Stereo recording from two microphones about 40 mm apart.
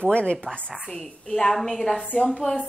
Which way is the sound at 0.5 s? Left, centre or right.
Centre.